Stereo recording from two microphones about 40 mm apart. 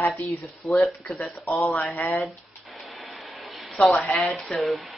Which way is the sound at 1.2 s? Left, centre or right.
Left.